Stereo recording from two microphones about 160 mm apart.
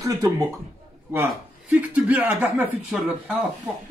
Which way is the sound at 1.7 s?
10° right (ahead or behind).